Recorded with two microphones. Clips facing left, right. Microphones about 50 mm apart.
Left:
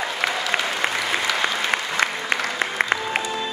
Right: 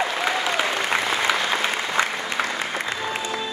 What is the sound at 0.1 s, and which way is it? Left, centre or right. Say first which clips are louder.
Applause: even; centre.